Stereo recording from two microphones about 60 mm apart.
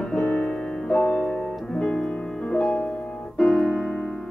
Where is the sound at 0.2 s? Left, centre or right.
Left.